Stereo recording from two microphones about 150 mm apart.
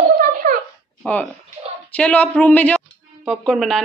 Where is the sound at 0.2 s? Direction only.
65° right (ahead or behind).